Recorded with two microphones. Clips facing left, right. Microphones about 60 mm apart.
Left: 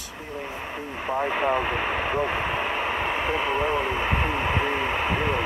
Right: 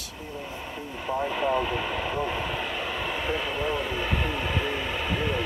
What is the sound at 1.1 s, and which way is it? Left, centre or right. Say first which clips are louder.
Vehicle: left 2 dB; left.